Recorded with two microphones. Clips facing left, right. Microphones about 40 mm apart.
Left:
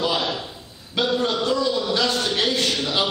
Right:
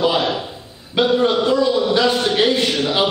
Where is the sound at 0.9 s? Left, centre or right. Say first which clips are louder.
Right 6 dB; centre.